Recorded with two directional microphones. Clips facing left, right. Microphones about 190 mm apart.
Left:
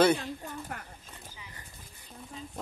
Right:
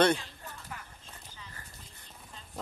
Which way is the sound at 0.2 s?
55° left (ahead or behind).